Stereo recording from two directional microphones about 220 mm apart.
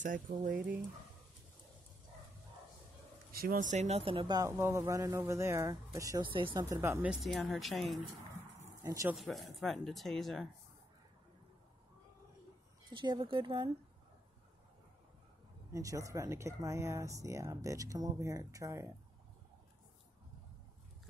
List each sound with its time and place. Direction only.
0.0 s speech: 35° right (ahead or behind)
3.3 s speech: 40° right (ahead or behind); by 8.0 s centre (ahead or behind)
8.8 s speech: 15° right (ahead or behind)
9.1 s speech: centre (ahead or behind)
12.9 s speech: 20° right (ahead or behind)
15.7 s speech: 15° right (ahead or behind)